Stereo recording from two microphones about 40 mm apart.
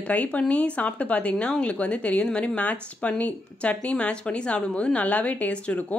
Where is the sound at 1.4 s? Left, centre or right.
Left.